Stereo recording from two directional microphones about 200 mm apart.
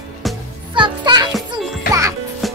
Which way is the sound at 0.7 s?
25° right (ahead or behind).